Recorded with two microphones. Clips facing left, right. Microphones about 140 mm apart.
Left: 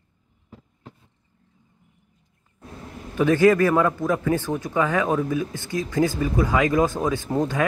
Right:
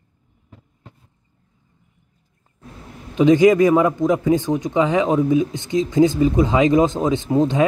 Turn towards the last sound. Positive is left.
turn(degrees=-20)  # may be behind; listen again after turning